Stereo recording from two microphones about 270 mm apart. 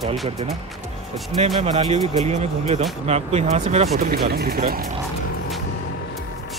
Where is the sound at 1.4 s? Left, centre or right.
Right.